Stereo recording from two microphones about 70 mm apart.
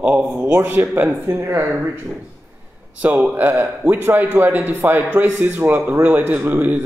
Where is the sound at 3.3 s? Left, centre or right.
Right.